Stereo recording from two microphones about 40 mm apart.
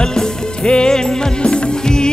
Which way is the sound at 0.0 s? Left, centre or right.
Centre.